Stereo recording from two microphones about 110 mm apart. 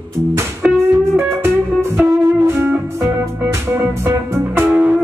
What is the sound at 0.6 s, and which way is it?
Music, 20° right (ahead or behind).